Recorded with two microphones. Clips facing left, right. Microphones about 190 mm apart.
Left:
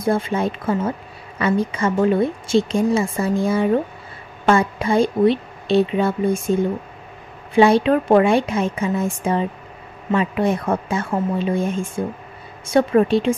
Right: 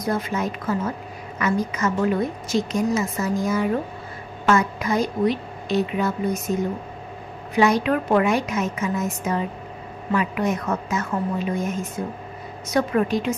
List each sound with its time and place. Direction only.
0.0 s a woman's voice: 30° left (ahead or behind)